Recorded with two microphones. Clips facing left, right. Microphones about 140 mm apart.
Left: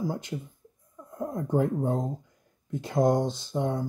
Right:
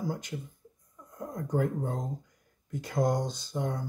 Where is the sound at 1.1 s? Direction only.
25° left (ahead or behind).